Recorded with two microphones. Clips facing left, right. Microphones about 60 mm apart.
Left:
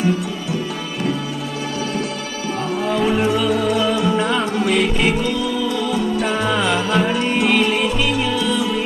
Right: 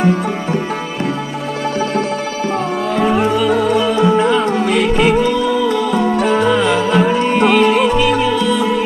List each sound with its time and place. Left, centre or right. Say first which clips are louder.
0.0 s music: right 5 dB; right
2.9 s music: right 3 dB; centre
4.0 s music: right 6 dB; centre
4.6 s music: right 4 dB; centre
5.9 s music: right 5 dB; right
6.2 s music: right 6 dB; centre